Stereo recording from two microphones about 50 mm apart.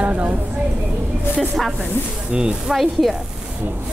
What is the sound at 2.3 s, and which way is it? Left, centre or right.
Speech, centre.